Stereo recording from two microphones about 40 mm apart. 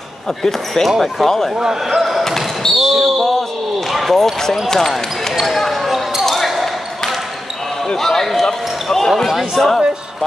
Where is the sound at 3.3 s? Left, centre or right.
Centre.